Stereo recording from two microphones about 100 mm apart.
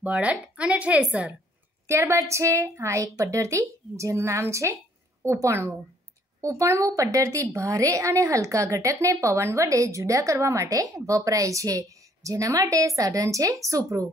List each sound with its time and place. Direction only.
0.0 s a woman's voice: 15° right (ahead or behind)
1.9 s a woman's voice: 30° right (ahead or behind)